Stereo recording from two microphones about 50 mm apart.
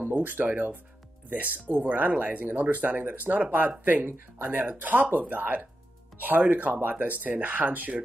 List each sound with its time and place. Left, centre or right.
0.0 s speech: right